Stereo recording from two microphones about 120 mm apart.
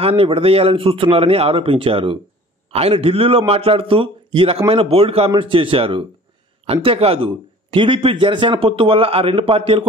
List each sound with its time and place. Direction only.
0.0 s a man's voice: 50° right (ahead or behind)